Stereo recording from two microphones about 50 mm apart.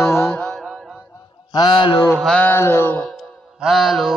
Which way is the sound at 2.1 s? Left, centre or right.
Centre.